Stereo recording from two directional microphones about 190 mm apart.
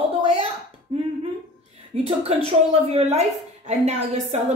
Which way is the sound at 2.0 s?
30° right (ahead or behind).